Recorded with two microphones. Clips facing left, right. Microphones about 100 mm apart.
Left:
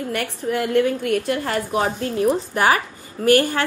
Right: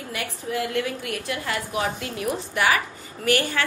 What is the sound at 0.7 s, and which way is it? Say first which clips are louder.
A woman's voice: left 9 dB; 45° left (ahead or behind).